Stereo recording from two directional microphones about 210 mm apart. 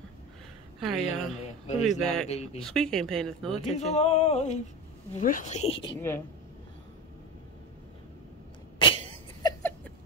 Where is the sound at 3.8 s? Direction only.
30° left (ahead or behind).